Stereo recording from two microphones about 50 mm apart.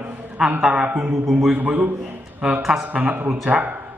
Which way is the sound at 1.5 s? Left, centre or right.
Right.